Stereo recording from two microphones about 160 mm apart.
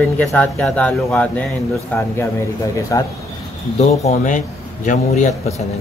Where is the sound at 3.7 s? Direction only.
50° left (ahead or behind).